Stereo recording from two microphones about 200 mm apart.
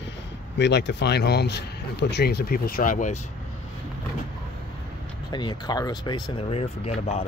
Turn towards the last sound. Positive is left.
turn(degrees=30)  # may be behind; listen again after turning